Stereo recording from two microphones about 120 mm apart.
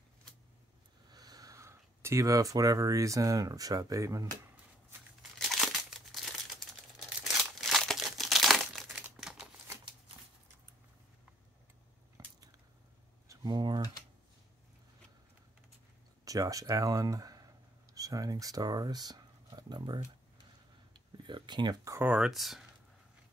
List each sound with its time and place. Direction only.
1.1 s speech: 30° right (ahead or behind)
5.5 s crumpling: centre (ahead or behind)
7.6 s crumpling: centre (ahead or behind)
12.2 s a sound: 30° right (ahead or behind)
16.3 s speech: 30° right (ahead or behind)
20.9 s a sound: 40° right (ahead or behind)
21.9 s speech: 10° right (ahead or behind)